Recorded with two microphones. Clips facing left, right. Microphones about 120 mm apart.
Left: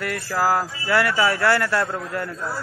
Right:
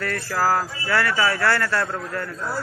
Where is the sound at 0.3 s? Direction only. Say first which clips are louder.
Left 1 dB; centre (ahead or behind).